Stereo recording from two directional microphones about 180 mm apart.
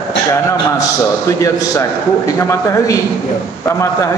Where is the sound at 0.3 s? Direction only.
15° left (ahead or behind).